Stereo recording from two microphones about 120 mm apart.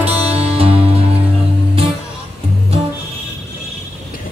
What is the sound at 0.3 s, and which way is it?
Music, 55° right (ahead or behind).